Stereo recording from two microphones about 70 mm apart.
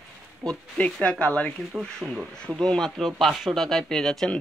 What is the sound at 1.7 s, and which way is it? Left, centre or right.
Speech, centre.